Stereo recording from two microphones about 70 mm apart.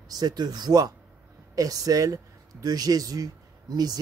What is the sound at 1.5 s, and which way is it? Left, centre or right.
Speech, right.